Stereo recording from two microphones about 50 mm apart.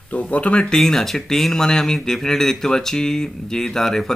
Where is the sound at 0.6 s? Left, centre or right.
Centre.